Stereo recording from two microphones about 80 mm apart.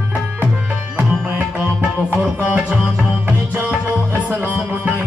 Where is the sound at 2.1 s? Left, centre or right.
Centre.